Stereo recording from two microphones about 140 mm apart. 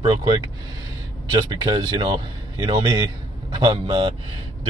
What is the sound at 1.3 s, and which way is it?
Speech, 25° right (ahead or behind).